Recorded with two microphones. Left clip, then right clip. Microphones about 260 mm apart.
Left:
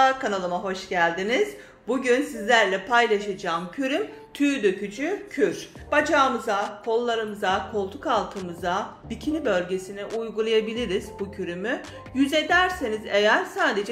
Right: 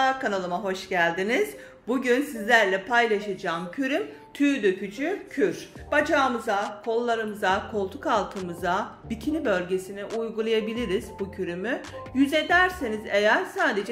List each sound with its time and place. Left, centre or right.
0.0 s speech: centre